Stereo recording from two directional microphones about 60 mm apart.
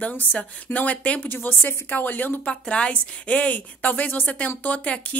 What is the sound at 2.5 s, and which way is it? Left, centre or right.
A woman's voice, centre.